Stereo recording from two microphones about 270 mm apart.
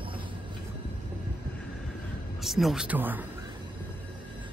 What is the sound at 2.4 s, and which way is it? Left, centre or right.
Speech, centre.